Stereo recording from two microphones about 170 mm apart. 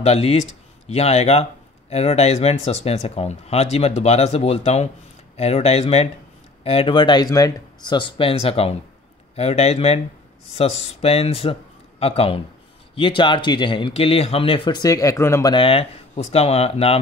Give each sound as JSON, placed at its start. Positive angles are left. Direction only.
{"t": 0.0, "sound": "speech", "side_deg": 35}
{"t": 15.5, "sound": "speech", "side_deg": 30}